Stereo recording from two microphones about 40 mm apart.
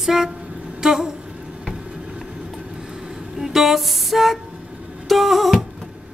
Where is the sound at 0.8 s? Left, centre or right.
Centre.